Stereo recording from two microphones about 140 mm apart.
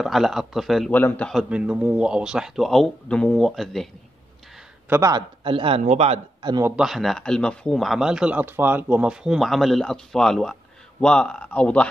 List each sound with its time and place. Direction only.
0.0 s speech: centre (ahead or behind)
0.9 s a man's voice: 10° left (ahead or behind)
1.3 s speech: 10° right (ahead or behind)
4.8 s speech: 15° right (ahead or behind)
5.1 s a man's voice: 40° right (ahead or behind)
6.8 s speech: centre (ahead or behind)